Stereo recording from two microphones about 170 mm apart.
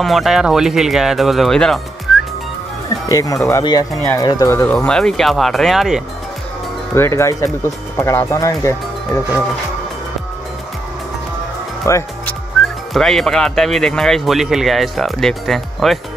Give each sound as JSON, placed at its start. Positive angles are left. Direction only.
{"t": 0.0, "sound": "speech", "side_deg": 0}
{"t": 3.1, "sound": "speech", "side_deg": 20}
{"t": 3.9, "sound": "speech", "side_deg": 5}
{"t": 4.2, "sound": "speech", "side_deg": 20}
{"t": 4.7, "sound": "speech", "side_deg": 5}
{"t": 7.0, "sound": "speech", "side_deg": 15}
{"t": 11.8, "sound": "music", "side_deg": 15}
{"t": 12.6, "sound": "music", "side_deg": 5}
{"t": 12.9, "sound": "speech", "side_deg": 0}